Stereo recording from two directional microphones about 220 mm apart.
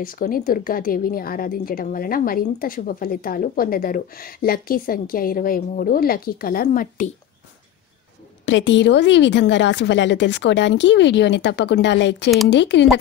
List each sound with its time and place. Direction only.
0.0 s a woman's voice: 40° left (ahead or behind)
8.5 s a woman's voice: 55° left (ahead or behind)